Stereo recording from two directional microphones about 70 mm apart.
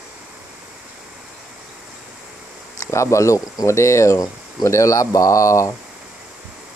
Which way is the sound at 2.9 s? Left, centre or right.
Left.